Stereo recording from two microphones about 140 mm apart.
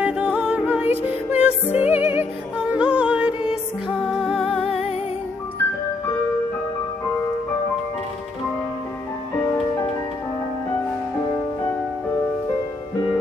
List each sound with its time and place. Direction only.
0.0 s music: 10° right (ahead or behind)
4.4 s music: 40° left (ahead or behind)